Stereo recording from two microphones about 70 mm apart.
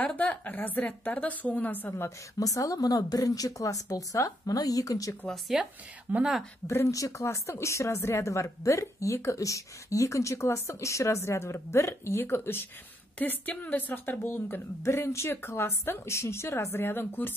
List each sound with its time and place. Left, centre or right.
0.0 s a woman's voice: left
2.0 s speech: left
5.3 s speech: centre
6.1 s speech: right
6.9 s speech: left
13.2 s a woman's voice: left